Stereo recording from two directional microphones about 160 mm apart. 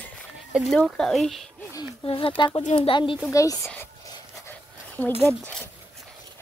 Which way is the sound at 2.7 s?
30° left (ahead or behind).